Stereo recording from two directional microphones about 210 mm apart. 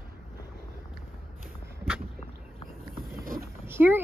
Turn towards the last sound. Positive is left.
turn(degrees=-10)  # may be behind; listen again after turning